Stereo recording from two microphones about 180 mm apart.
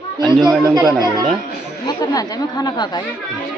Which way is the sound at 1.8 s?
20° left (ahead or behind).